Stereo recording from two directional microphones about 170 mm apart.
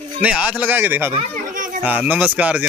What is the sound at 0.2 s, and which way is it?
Speech, 10° right (ahead or behind).